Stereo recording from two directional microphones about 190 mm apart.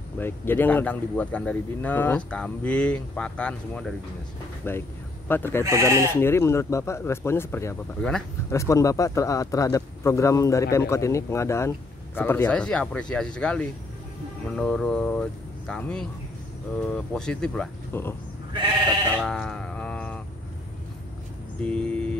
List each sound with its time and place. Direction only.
0.2 s speech: 10° left (ahead or behind)
5.6 s speech: 15° right (ahead or behind)
6.1 s speech: 15° left (ahead or behind)
19.1 s a sound: centre (ahead or behind)
21.6 s speech: 5° left (ahead or behind)